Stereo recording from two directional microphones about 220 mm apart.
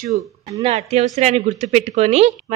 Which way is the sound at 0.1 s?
35° right (ahead or behind).